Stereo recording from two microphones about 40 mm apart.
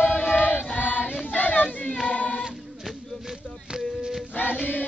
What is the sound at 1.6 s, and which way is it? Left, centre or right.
Choir, left.